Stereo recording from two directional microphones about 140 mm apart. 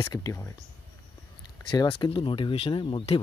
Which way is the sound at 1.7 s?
35° left (ahead or behind).